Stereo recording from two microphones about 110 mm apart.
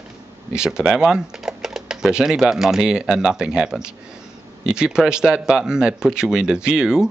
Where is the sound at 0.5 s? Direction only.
5° right (ahead or behind).